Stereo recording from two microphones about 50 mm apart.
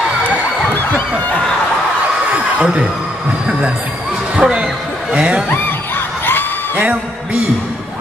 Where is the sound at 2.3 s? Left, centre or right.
Right.